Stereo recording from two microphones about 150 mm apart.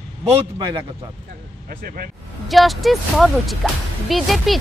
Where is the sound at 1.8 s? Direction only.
75° right (ahead or behind).